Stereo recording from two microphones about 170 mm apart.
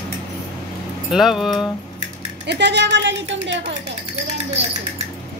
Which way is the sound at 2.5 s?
90° right.